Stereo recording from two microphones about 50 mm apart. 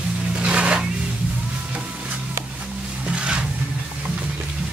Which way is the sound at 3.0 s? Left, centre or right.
Right.